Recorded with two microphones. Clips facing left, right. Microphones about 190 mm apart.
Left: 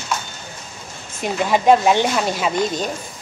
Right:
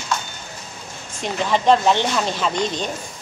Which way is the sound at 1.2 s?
10° left (ahead or behind).